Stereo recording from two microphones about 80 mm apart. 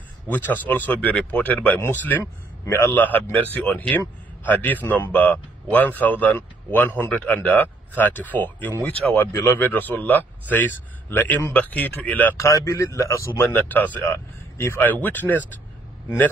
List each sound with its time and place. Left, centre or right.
0.3 s speech: left
12.4 s speech: left
13.4 s speech: left